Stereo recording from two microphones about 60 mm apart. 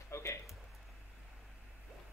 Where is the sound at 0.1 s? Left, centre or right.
Left.